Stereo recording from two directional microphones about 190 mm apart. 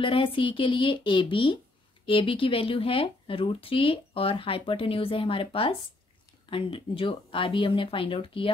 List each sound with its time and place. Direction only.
0.0 s speech: 25° left (ahead or behind)